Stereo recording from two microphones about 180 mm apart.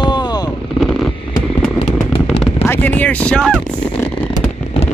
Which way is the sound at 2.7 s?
10° left (ahead or behind).